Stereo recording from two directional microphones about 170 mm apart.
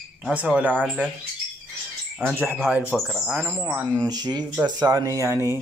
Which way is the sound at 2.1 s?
5° right (ahead or behind).